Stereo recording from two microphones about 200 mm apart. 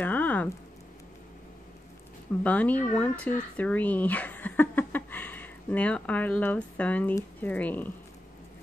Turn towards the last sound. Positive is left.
turn(degrees=10)  # may be behind; listen again after turning